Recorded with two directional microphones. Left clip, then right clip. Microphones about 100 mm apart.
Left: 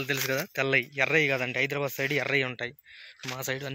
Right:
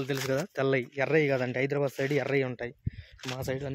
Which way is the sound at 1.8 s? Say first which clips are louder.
Left 1 dB; 25° right (ahead or behind).